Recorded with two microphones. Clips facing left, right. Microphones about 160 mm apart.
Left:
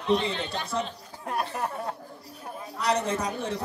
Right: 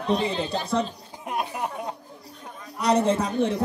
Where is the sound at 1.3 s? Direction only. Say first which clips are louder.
Right 1 dB; 15° right (ahead or behind).